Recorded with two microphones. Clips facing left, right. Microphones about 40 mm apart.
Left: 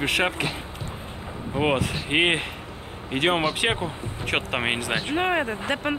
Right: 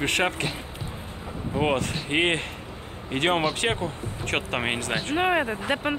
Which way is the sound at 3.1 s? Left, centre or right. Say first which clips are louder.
Left 1 dB; centre.